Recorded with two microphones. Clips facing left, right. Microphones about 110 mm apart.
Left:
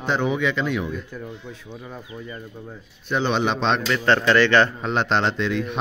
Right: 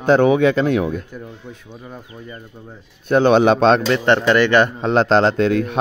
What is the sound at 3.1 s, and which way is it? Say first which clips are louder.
Speech: right 9 dB; 50° right (ahead or behind).